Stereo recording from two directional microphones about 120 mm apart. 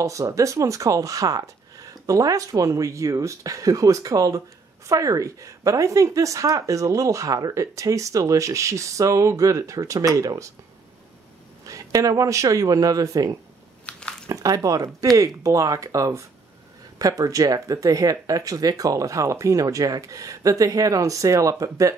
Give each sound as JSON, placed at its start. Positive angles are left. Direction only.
{"t": 0.0, "sound": "speech", "side_deg": -25}
{"t": 11.6, "sound": "speech", "side_deg": -30}
{"t": 13.8, "sound": "a sound", "side_deg": 5}
{"t": 14.3, "sound": "speech", "side_deg": -30}